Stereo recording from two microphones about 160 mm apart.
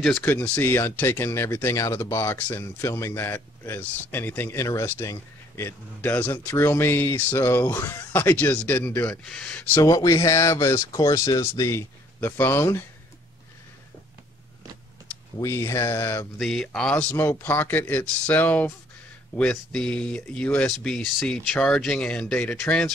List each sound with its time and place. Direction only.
0.2 s speech: 10° left (ahead or behind)
9.8 s speech: 20° left (ahead or behind)
15.3 s speech: 15° left (ahead or behind)
16.3 s speech: centre (ahead or behind)